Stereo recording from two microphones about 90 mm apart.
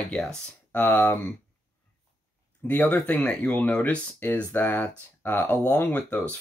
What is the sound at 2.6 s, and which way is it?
Speech, 15° left (ahead or behind).